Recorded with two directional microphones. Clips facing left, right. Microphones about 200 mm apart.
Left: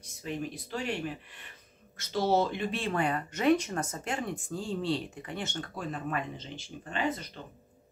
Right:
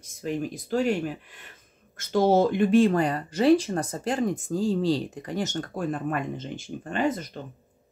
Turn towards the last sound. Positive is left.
turn(degrees=-50)  # may be behind; listen again after turning